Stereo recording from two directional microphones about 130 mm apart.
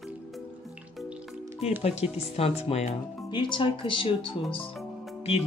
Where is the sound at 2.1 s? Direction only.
55° left (ahead or behind).